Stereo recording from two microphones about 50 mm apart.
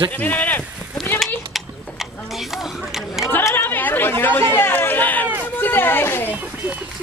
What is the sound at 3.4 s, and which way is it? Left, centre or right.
Chatter, left.